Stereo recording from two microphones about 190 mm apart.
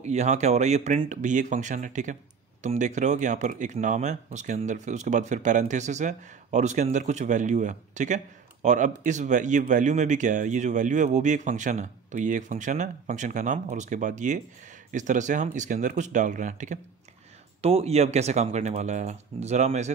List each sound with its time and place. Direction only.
0.0 s speech: 35° right (ahead or behind)